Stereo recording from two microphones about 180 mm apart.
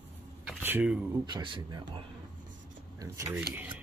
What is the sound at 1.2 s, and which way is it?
Speech, 25° right (ahead or behind).